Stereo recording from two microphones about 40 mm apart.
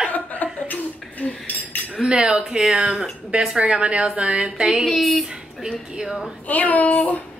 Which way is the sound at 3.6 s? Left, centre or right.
Right.